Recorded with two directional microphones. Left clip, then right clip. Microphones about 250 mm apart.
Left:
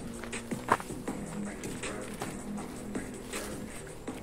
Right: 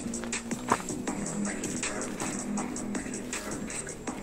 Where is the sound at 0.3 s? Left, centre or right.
Right.